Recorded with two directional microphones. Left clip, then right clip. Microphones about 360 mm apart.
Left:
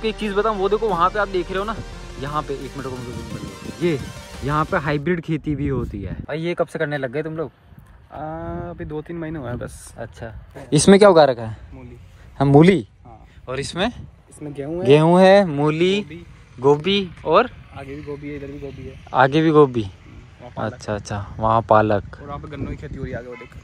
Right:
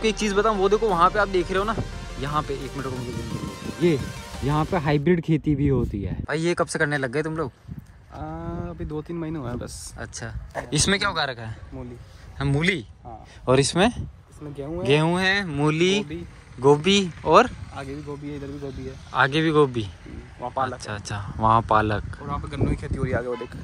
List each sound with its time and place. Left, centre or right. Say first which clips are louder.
0.0 s speech: left 1 dB; centre
13.5 s speech: right 5 dB; centre
19.1 s speech: left 5 dB; centre
22.3 s speech: right 3 dB; centre